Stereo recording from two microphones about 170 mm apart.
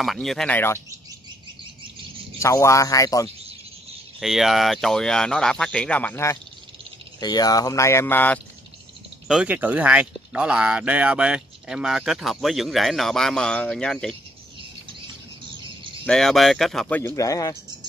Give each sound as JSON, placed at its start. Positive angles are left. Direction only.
{"t": 0.0, "sound": "speech", "side_deg": 0}
{"t": 2.4, "sound": "speech", "side_deg": 20}
{"t": 4.2, "sound": "speech", "side_deg": 0}
{"t": 7.2, "sound": "speech", "side_deg": 25}
{"t": 9.3, "sound": "speech", "side_deg": -5}
{"t": 16.1, "sound": "speech", "side_deg": 0}